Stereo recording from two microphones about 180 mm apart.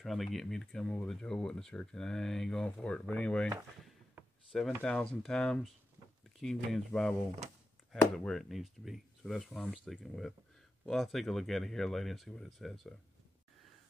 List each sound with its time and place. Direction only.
0.0 s speech: centre (ahead or behind)
4.5 s speech: centre (ahead or behind)
8.2 s speech: centre (ahead or behind)